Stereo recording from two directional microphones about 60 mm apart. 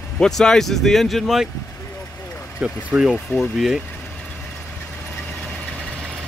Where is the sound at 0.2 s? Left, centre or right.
Centre.